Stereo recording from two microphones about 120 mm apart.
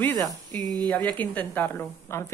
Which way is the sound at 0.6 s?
35° right (ahead or behind).